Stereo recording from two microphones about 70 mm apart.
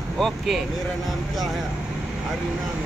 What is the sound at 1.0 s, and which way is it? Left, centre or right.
Speech, centre.